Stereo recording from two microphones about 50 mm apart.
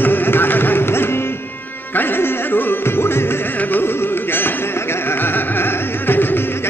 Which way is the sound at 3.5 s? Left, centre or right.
Left.